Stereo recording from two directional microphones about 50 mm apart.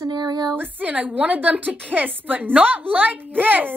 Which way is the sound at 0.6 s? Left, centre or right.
Right.